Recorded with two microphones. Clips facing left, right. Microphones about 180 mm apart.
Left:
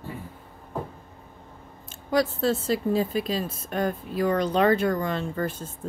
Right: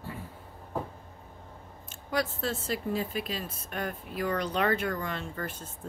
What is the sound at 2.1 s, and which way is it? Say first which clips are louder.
A woman's voice: left 8 dB; 35° left (ahead or behind).